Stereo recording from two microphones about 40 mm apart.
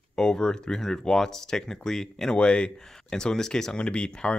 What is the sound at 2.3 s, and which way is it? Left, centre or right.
Speech, left.